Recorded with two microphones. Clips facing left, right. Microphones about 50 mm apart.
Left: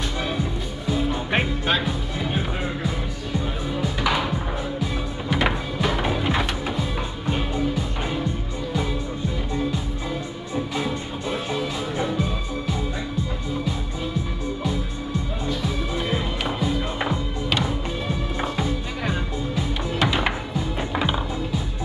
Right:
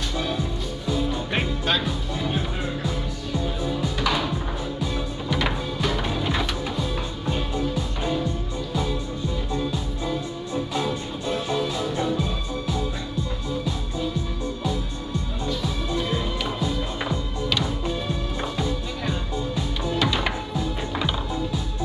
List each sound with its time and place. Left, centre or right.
0.9 s music: left
10.0 s music: centre
15.4 s music: left